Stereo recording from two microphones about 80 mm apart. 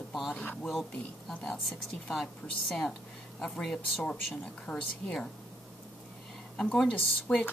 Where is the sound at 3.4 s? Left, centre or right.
Centre.